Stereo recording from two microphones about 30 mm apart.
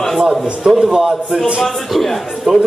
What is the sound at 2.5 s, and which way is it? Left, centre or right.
Speech, right.